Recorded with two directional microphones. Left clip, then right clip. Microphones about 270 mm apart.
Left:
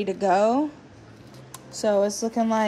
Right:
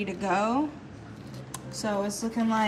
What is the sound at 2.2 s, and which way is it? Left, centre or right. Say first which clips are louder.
Speech: left 5 dB; left.